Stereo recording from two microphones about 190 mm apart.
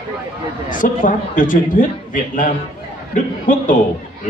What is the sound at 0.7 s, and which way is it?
A man's voice, 45° left (ahead or behind).